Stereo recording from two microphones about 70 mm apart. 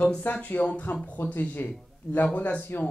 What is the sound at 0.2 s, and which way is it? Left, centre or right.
Speech, left.